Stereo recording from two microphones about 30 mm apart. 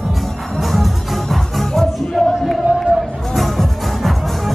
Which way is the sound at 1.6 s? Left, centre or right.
Centre.